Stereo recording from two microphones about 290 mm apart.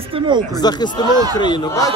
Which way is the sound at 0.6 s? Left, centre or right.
Centre.